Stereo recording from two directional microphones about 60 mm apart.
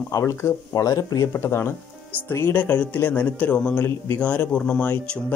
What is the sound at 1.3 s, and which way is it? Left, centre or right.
Speech, left.